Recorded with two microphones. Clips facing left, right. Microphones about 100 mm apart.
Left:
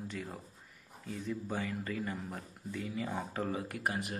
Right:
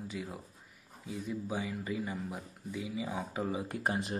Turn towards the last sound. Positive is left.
turn(degrees=-25)  # may be behind; listen again after turning